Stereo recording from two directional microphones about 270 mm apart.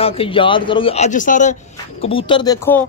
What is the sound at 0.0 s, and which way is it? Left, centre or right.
Speech, centre.